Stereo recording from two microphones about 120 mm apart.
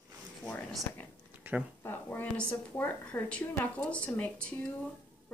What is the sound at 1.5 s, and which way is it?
Speech, 15° right (ahead or behind).